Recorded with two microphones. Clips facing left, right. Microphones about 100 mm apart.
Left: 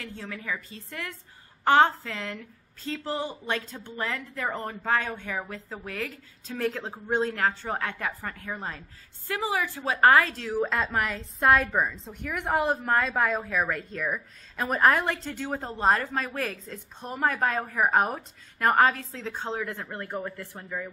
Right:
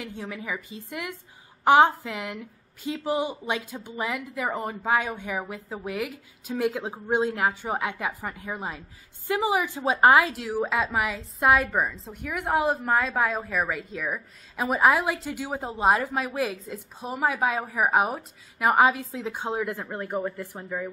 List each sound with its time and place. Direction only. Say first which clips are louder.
0.0 s a woman's voice: right 3 dB; 15° right (ahead or behind)